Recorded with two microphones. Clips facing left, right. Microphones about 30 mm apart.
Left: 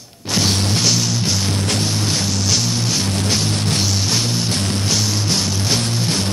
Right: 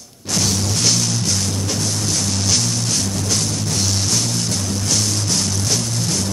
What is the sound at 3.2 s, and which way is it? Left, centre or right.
Music, left.